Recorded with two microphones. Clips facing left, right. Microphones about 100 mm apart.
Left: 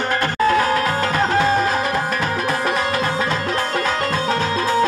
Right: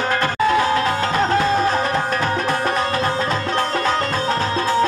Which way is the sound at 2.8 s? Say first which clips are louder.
Even; 35° right (ahead or behind).